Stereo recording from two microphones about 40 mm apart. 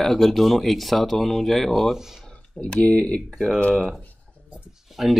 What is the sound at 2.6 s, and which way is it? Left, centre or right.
Speech, left.